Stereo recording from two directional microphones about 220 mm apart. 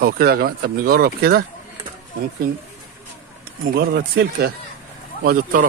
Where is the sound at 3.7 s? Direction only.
45° right (ahead or behind).